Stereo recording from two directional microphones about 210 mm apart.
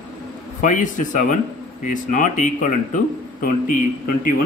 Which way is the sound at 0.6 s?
35° left (ahead or behind).